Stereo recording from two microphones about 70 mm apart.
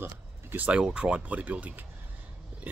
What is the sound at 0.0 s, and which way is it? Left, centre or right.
Speech, right.